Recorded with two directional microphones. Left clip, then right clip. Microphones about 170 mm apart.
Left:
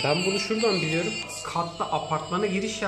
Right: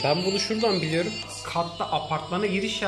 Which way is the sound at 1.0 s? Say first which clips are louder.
Left 2 dB; 10° left (ahead or behind).